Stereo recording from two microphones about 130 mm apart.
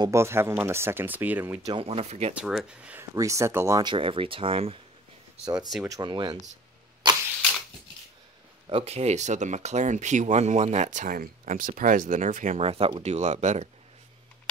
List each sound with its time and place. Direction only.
0.0 s speech: 20° right (ahead or behind)
1.7 s speech: 45° right (ahead or behind)
2.3 s speech: 5° right (ahead or behind)
3.2 s speech: 25° right (ahead or behind)
3.8 s speech: 40° right (ahead or behind)
5.9 s speech: 30° right (ahead or behind)
8.6 s speech: 50° right (ahead or behind); by 12.5 s 85° right
12.5 s speech: 50° right (ahead or behind)